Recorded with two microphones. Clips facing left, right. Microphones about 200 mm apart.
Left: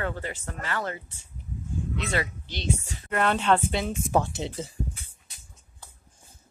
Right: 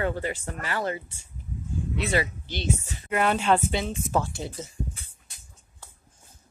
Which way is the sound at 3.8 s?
10° left (ahead or behind).